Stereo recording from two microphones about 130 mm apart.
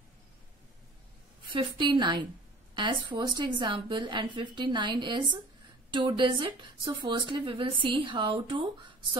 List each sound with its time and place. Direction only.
1.5 s a woman's voice: 40° right (ahead or behind)